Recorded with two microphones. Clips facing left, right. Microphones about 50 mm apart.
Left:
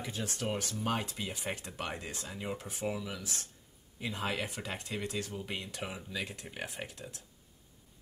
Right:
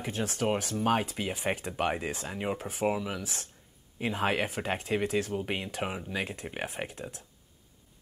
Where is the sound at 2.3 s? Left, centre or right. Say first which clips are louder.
Right 4 dB; right.